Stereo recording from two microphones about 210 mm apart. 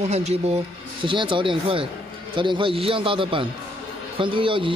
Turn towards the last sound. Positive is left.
turn(degrees=-25)  # may be behind; listen again after turning